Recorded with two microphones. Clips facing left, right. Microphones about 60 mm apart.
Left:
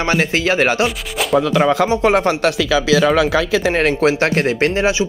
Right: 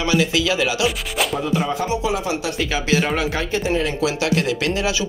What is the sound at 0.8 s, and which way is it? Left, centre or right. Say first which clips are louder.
Music: left 1 dB; centre.